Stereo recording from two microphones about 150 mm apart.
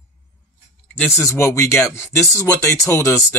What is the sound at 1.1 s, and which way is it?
Speech, 20° left (ahead or behind).